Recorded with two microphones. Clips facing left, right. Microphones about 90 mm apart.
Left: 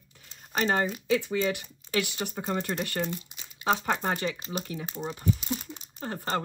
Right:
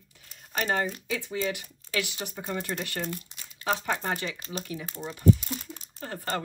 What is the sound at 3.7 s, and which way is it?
Speech, 35° left (ahead or behind).